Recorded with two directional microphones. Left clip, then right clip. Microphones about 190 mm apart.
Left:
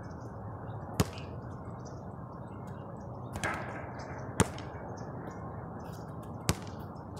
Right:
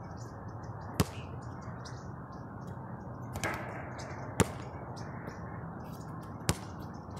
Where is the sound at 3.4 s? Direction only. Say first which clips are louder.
Left 1 dB; 15° right (ahead or behind).